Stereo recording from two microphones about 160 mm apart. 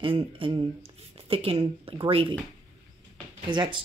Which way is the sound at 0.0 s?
35° right (ahead or behind).